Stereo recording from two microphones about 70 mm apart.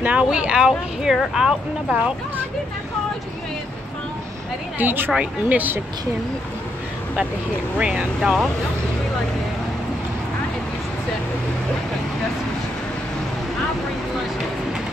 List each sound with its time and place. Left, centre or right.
0.0 s speech: centre
4.7 s speech: right
7.8 s speech: centre
8.2 s speech: centre